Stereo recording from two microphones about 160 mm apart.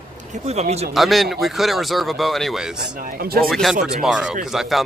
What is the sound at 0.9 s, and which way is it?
Speech, centre (ahead or behind).